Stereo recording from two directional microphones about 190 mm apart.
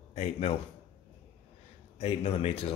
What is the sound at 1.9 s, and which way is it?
Speech, 35° left (ahead or behind).